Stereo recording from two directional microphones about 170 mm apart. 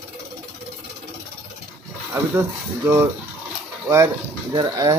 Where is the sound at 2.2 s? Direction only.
10° right (ahead or behind).